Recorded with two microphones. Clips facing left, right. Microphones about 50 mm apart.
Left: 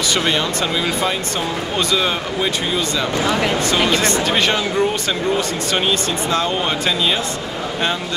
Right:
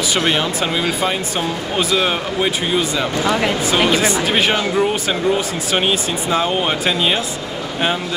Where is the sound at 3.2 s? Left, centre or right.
Centre.